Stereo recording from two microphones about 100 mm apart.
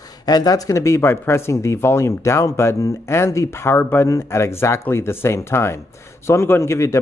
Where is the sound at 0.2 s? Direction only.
40° left (ahead or behind).